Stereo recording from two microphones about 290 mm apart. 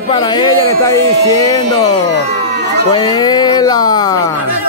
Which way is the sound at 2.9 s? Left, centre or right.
Centre.